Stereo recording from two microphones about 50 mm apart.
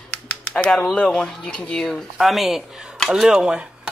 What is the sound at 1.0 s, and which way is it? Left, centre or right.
Speech, centre.